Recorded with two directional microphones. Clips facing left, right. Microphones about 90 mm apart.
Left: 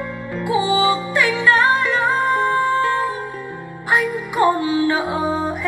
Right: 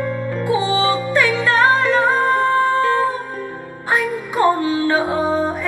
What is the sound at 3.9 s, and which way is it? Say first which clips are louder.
Music: even; 40° right (ahead or behind).